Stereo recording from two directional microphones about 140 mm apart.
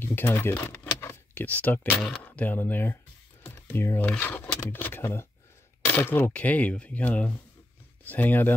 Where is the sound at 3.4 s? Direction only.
15° left (ahead or behind).